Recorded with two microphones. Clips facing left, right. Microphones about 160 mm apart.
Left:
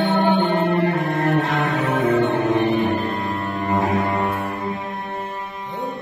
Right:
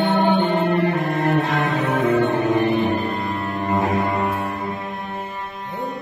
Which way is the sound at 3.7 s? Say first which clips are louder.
Even; centre (ahead or behind).